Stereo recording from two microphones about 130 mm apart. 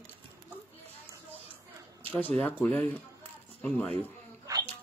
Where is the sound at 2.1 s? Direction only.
10° left (ahead or behind).